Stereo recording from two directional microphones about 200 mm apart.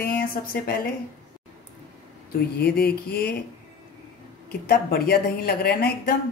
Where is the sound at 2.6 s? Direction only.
50° left (ahead or behind).